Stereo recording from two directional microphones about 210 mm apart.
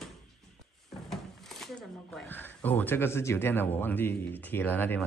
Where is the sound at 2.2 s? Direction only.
10° left (ahead or behind).